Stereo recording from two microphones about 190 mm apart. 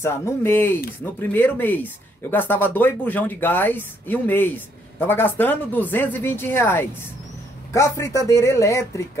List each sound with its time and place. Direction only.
0.0 s speech: 10° left (ahead or behind)